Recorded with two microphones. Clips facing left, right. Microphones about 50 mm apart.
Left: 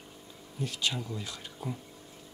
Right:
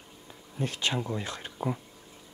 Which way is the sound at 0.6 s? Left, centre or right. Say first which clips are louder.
Right 3 dB; right.